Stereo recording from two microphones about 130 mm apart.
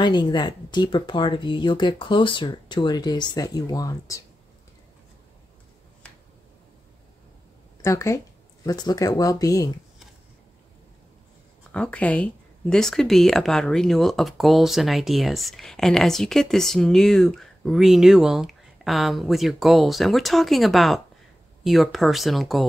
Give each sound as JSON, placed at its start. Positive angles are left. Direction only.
{"t": 0.0, "sound": "speech", "side_deg": 35}
{"t": 7.8, "sound": "speech", "side_deg": 20}
{"t": 11.7, "sound": "speech", "side_deg": 10}